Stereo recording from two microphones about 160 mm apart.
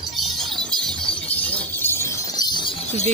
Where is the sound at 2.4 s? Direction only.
25° left (ahead or behind).